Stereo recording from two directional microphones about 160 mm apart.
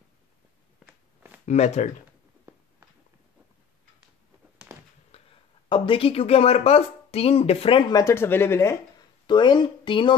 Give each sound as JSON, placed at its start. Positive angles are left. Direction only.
{"t": 1.4, "sound": "speech", "side_deg": 45}
{"t": 4.7, "sound": "a sound", "side_deg": -15}
{"t": 5.1, "sound": "a sound", "side_deg": 40}
{"t": 5.7, "sound": "speech", "side_deg": 35}
{"t": 7.9, "sound": "speech", "side_deg": 15}
{"t": 9.3, "sound": "speech", "side_deg": 30}